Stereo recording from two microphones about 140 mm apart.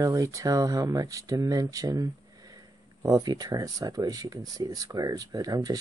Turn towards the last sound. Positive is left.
turn(degrees=-25)  # may be behind; listen again after turning